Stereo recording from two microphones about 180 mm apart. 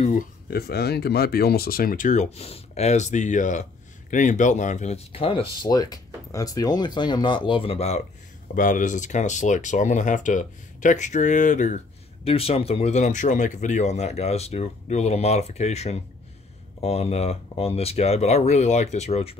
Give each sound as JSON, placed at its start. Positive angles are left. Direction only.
{"t": 0.5, "sound": "speech", "side_deg": 60}
{"t": 8.5, "sound": "speech", "side_deg": 45}